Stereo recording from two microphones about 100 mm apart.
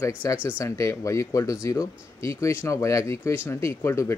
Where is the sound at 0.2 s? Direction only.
25° left (ahead or behind).